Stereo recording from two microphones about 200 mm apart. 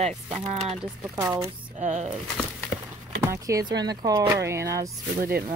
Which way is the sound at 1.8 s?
35° right (ahead or behind).